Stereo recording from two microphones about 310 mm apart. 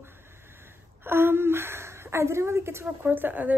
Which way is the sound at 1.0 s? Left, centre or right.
Centre.